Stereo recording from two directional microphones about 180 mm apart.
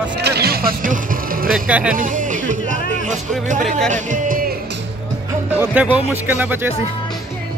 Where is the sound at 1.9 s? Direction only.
45° right (ahead or behind).